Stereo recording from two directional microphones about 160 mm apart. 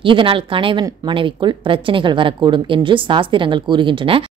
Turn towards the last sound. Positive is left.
turn(degrees=-35)  # may be behind; listen again after turning